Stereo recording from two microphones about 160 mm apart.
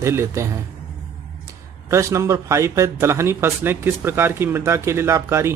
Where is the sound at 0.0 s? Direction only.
15° right (ahead or behind).